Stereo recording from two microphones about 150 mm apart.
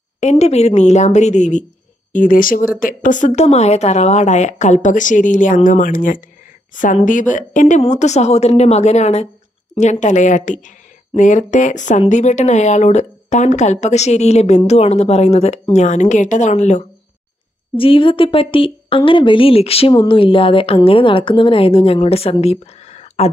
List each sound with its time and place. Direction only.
0.2 s speech: 45° left (ahead or behind)
2.1 s a woman's voice: 65° left (ahead or behind); by 16.8 s 50° left (ahead or behind)
17.7 s a woman's voice: 35° left (ahead or behind)